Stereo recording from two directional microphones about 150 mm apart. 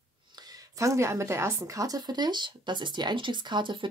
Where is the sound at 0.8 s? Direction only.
20° right (ahead or behind).